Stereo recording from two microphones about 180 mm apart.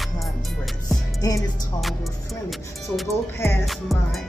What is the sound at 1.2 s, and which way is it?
Music, 20° left (ahead or behind).